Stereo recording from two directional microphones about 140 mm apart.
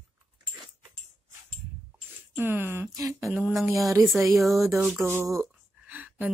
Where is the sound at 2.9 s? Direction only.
25° right (ahead or behind).